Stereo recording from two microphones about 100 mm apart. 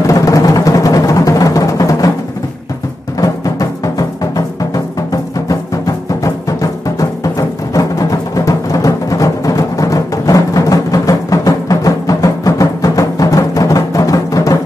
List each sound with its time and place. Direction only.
0.0 s music: 35° left (ahead or behind)
3.2 s music: 35° left (ahead or behind)